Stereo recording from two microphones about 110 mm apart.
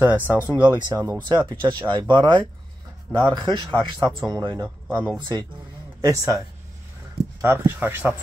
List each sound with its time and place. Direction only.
0.0 s speech: 15° right (ahead or behind)
1.4 s speech: 40° right (ahead or behind)
4.8 s speech: 15° right (ahead or behind)
5.2 s speech: 40° right (ahead or behind)
7.4 s speech: 20° right (ahead or behind)